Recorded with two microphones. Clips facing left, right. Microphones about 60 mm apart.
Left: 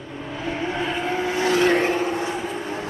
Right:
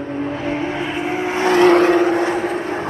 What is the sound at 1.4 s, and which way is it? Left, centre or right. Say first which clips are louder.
Vehicle: right 7 dB; right.